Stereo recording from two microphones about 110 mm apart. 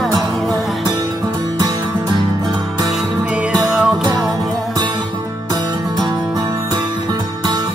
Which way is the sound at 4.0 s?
40° right (ahead or behind).